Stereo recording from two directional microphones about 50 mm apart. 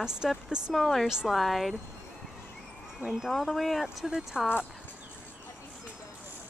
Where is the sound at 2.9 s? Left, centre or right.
Centre.